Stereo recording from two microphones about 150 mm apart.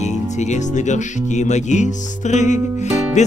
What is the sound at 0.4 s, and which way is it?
Music, 50° left (ahead or behind).